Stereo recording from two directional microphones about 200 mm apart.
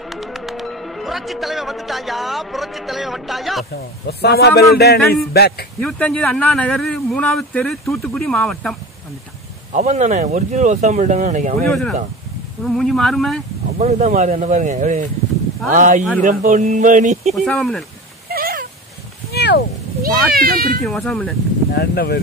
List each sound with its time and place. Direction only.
0.0 s speech: centre (ahead or behind)
4.1 s a man's voice: 55° left (ahead or behind)
5.8 s speech: 5° left (ahead or behind)
9.7 s speech: 35° right (ahead or behind)
12.6 s speech: centre (ahead or behind)
13.7 s speech: 35° right (ahead or behind)
17.3 s speech: centre (ahead or behind)
18.3 s a sound: 45° right (ahead or behind)
19.3 s a sound: 55° left (ahead or behind)
20.0 s speech: 50° right (ahead or behind)
20.8 s speech: centre (ahead or behind)
21.7 s speech: 55° left (ahead or behind)